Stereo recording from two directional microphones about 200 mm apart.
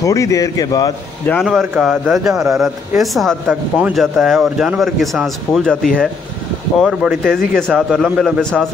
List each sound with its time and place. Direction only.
0.0 s speech: 15° left (ahead or behind)
1.3 s speech: centre (ahead or behind)